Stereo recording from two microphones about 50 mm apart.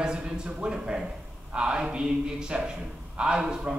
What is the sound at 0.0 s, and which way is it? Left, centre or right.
A man's voice, centre.